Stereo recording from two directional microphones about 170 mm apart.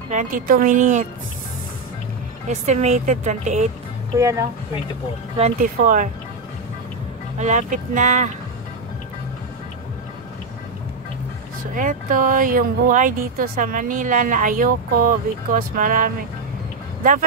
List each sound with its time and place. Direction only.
0.1 s speech: 50° right (ahead or behind)
2.4 s speech: 45° right (ahead or behind)
4.2 s speech: 20° right (ahead or behind)
5.4 s speech: 50° right (ahead or behind)
7.3 s speech: 45° right (ahead or behind)
11.7 s speech: 50° right (ahead or behind)